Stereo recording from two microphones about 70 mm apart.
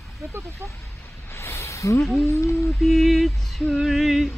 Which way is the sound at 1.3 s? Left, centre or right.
Left.